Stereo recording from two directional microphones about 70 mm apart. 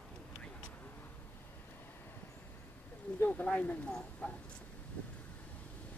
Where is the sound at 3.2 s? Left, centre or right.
Left.